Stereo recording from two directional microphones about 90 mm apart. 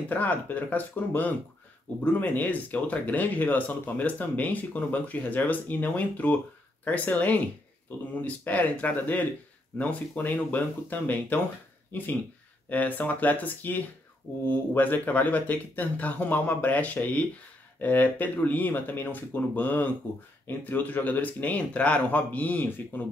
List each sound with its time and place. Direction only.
0.1 s speech: 20° left (ahead or behind)
12.6 s speech: 20° left (ahead or behind)